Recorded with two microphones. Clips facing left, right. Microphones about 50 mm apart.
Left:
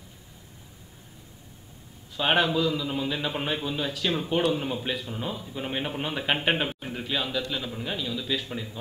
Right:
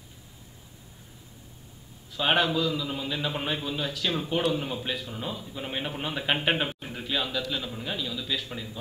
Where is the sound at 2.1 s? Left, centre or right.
Centre.